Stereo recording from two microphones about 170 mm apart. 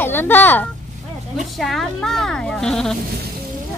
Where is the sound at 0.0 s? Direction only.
10° left (ahead or behind).